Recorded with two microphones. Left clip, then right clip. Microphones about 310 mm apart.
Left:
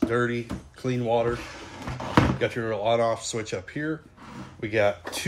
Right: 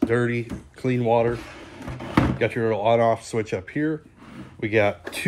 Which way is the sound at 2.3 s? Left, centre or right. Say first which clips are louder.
Right 4 dB; right.